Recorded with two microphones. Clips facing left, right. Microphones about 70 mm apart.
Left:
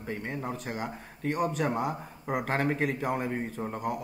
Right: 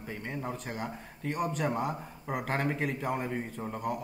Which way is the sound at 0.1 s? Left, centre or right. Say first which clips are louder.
Left 3 dB; centre.